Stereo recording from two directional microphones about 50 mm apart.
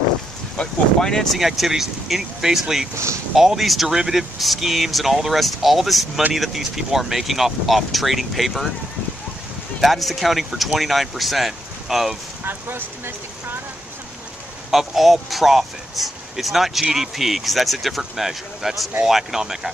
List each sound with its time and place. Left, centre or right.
0.9 s speech: centre
1.4 s speech: centre
9.8 s speech: centre
12.4 s speech: right
14.7 s speech: centre